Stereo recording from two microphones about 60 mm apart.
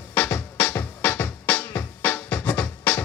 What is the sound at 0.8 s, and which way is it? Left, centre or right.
Music, left.